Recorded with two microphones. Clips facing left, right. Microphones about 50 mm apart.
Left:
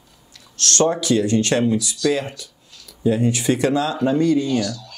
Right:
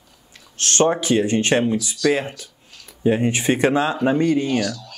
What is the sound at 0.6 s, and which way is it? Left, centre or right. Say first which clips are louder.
Speech: right 1 dB; right.